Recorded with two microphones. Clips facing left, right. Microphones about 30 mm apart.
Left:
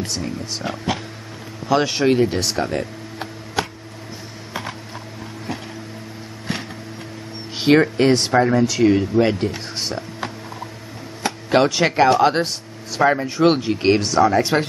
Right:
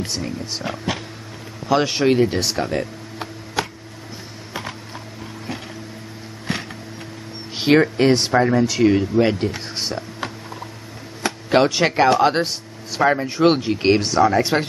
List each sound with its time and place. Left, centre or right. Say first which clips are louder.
0.0 s speech: even; centre
4.6 s typing: left 1 dB; centre
7.5 s speech: left 1 dB; centre